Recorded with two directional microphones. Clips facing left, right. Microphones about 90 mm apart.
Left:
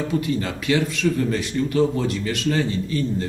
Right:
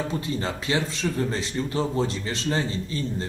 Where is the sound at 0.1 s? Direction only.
30° right (ahead or behind).